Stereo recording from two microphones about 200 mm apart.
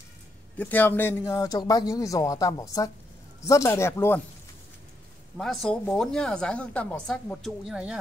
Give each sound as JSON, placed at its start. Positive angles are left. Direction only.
{"t": 0.6, "sound": "a man's voice", "side_deg": 10}
{"t": 5.4, "sound": "a woman's voice", "side_deg": 0}